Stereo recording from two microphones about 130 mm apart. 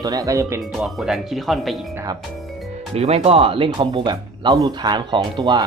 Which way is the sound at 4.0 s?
30° right (ahead or behind).